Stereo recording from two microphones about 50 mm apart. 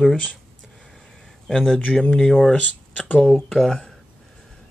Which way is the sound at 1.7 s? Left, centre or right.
Left.